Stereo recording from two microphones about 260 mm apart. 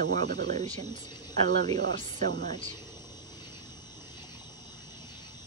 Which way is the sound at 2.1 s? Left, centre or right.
Right.